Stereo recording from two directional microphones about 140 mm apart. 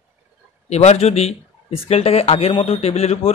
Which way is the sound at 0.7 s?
50° left (ahead or behind).